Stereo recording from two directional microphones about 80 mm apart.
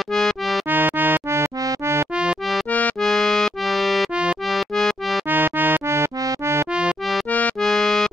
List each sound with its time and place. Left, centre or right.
0.1 s music: centre
0.7 s music: right
3.0 s music: centre
5.3 s music: right
7.6 s music: centre